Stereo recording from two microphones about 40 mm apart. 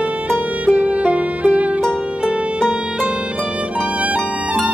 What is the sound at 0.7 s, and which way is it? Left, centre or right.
Music, right.